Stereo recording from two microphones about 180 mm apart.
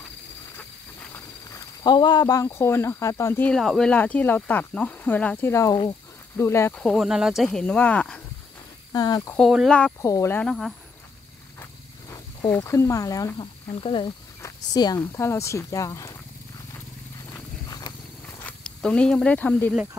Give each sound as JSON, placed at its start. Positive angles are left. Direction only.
{"t": 1.1, "sound": "speech", "side_deg": 20}
{"t": 6.8, "sound": "speech", "side_deg": 0}
{"t": 8.9, "sound": "speech", "side_deg": 20}
{"t": 9.5, "sound": "speech", "side_deg": 0}
{"t": 10.0, "sound": "speech", "side_deg": 15}
{"t": 12.1, "sound": "speech", "side_deg": 15}
{"t": 17.3, "sound": "a sound", "side_deg": 20}
{"t": 18.4, "sound": "speech", "side_deg": 5}